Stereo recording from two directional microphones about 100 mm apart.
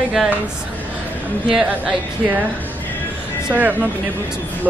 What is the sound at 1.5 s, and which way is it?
Speech, 10° right (ahead or behind).